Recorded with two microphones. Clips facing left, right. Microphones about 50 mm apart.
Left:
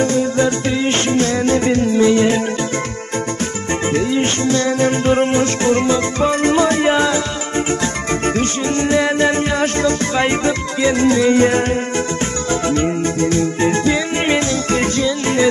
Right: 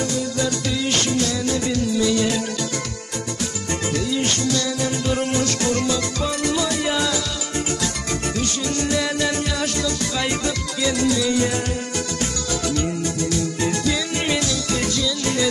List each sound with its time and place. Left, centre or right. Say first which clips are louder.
0.0 s music: left 8 dB; left
3.9 s music: left 6 dB; left
12.6 s music: left 6 dB; left